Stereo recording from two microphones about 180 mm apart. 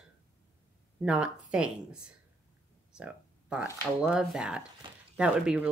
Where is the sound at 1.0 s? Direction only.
5° right (ahead or behind).